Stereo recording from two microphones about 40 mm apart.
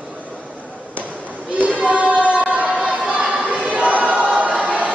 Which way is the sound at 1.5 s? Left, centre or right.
Right.